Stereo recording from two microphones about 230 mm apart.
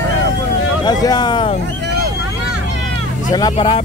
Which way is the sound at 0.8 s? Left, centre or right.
Centre.